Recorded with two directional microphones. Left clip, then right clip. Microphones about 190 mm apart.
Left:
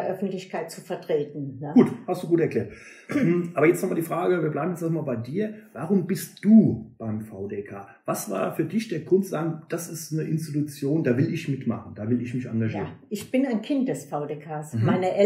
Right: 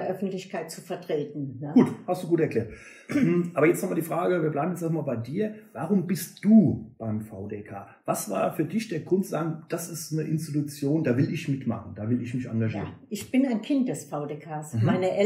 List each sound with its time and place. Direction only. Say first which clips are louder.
0.2 s a woman's voice: left 2 dB; 15° left (ahead or behind)
1.7 s speech: left 2 dB; 5° right (ahead or behind)
8.1 s speech: right 1 dB; 5° right (ahead or behind)
12.7 s a woman's voice: left 3 dB; 15° left (ahead or behind)